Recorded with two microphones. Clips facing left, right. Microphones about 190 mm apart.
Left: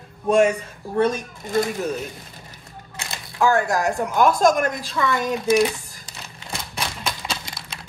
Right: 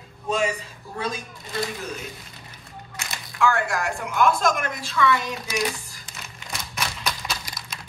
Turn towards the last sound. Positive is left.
turn(degrees=30)  # may be behind; listen again after turning